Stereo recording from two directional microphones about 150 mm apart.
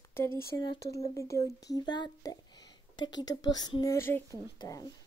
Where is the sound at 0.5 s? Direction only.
20° left (ahead or behind).